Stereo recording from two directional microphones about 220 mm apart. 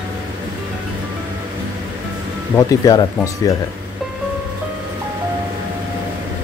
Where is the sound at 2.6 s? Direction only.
15° left (ahead or behind).